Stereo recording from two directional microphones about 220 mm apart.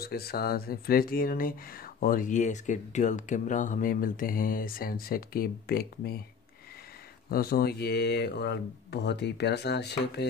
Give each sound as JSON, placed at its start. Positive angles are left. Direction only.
{"t": 0.0, "sound": "speech", "side_deg": 45}
{"t": 7.2, "sound": "speech", "side_deg": 45}